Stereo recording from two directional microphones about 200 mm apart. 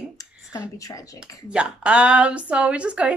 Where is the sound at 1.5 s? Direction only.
5° right (ahead or behind).